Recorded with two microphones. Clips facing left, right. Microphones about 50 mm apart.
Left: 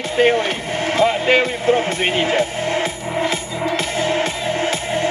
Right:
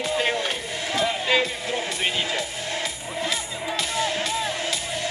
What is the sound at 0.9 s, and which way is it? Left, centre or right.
Speech, left.